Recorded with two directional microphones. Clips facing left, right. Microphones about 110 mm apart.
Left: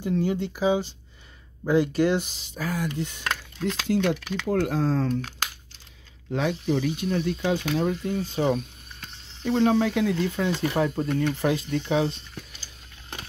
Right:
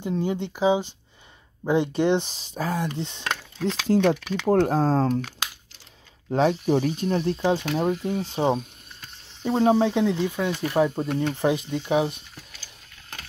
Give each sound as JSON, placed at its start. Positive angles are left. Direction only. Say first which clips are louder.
{"t": 0.0, "sound": "speech", "louder": "left 1 dB", "side_deg": -20}
{"t": 3.9, "sound": "speech", "louder": "right 4 dB", "side_deg": -35}
{"t": 6.7, "sound": "speech", "louder": "right 3 dB", "side_deg": -40}